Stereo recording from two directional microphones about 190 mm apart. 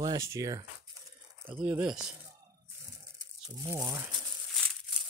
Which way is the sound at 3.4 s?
15° right (ahead or behind).